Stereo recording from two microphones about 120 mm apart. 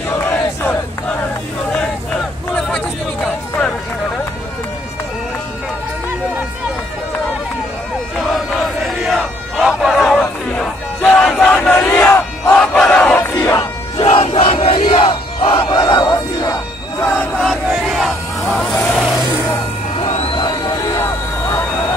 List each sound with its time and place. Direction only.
0.2 s battle cry: 15° left (ahead or behind)
8.8 s crowd: centre (ahead or behind); by 12.0 s 15° left (ahead or behind)
12.4 s battle cry: 5° left (ahead or behind)
14.0 s crowd: 55° left (ahead or behind); by 16.5 s 35° left (ahead or behind)
17.4 s vehicle: 5° left (ahead or behind)
20.3 s a sound: 35° left (ahead or behind)